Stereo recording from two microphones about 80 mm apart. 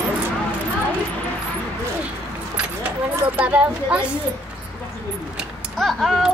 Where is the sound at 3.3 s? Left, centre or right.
Centre.